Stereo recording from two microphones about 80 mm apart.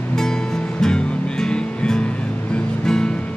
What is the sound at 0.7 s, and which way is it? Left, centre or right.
Music, centre.